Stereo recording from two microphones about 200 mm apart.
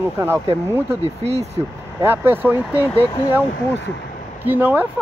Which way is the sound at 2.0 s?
10° right (ahead or behind).